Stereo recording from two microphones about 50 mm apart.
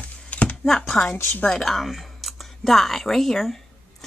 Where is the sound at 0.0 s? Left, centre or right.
Left.